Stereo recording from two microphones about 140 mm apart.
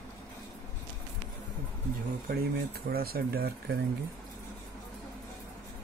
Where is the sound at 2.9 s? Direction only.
90° right.